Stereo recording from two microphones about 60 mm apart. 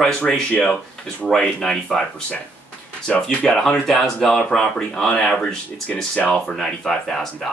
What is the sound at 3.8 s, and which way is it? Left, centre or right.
Speech, centre.